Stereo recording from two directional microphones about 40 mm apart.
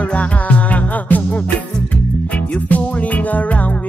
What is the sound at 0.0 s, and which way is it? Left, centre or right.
Music, left.